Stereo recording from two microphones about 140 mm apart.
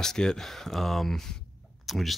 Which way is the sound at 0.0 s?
5° left (ahead or behind).